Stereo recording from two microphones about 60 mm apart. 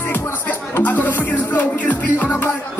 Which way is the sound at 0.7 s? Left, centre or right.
Left.